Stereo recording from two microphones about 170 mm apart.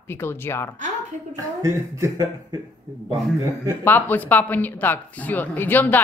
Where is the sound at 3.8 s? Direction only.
10° left (ahead or behind).